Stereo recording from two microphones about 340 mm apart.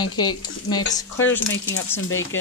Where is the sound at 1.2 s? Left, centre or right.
Left.